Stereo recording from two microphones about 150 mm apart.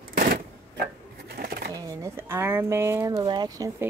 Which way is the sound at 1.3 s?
90° right.